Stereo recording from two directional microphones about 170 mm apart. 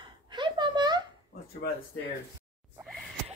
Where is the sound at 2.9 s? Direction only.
Centre (ahead or behind).